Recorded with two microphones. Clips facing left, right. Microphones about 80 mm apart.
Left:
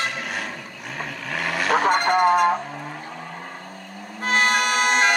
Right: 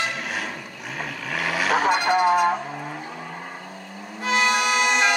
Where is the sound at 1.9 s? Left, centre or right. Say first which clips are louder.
Left 1 dB; left.